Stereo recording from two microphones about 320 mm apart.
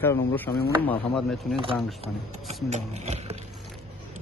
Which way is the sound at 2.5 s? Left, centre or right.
Right.